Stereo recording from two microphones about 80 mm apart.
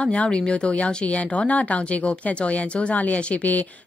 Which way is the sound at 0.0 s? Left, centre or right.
Centre.